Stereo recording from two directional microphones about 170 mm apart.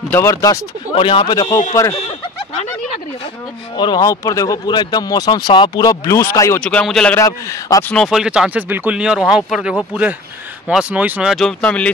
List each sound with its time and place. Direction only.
0.1 s speech: 15° left (ahead or behind)
0.9 s speech: 30° left (ahead or behind)
3.7 s speech: 25° left (ahead or behind); by 7.2 s 5° left (ahead or behind)
7.2 s speech: 20° left (ahead or behind)
7.9 s speech: centre (ahead or behind)